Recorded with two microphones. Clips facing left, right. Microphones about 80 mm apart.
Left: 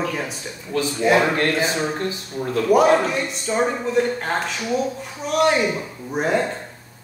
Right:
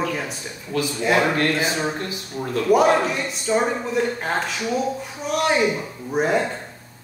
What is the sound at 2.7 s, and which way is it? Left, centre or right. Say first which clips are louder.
A man's voice: left 1 dB; centre.